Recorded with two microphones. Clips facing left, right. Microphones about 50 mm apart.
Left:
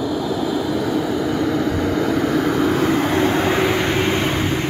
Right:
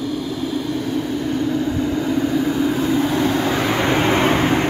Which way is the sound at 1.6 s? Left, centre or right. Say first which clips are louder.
Left 1 dB; left.